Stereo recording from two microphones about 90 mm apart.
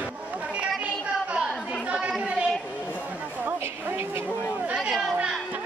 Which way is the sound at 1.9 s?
10° right (ahead or behind).